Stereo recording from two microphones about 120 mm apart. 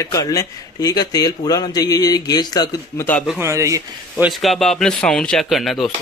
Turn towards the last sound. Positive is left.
turn(degrees=0)  # may be behind; listen again after turning